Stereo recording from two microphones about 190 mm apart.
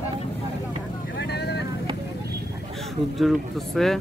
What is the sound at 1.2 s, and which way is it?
Vehicle, 60° left (ahead or behind).